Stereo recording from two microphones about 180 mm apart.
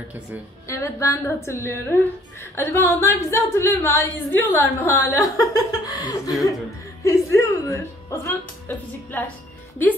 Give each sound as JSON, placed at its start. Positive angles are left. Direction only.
{"t": 0.7, "sound": "speech", "side_deg": 15}